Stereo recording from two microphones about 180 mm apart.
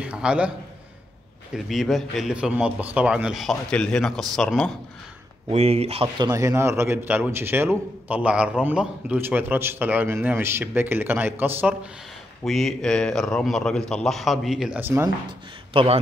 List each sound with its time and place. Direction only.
0.0 s a man's voice: 5° right (ahead or behind)
1.5 s a man's voice: centre (ahead or behind)
5.5 s a man's voice: 35° right (ahead or behind); by 11.9 s 10° right (ahead or behind)
12.4 s a man's voice: centre (ahead or behind)
15.2 s a man's voice: 30° right (ahead or behind)